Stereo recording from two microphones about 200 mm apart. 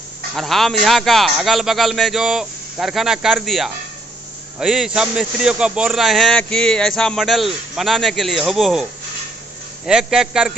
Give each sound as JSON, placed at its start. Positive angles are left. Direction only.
{"t": 0.4, "sound": "speech", "side_deg": 0}
{"t": 9.8, "sound": "speech", "side_deg": -5}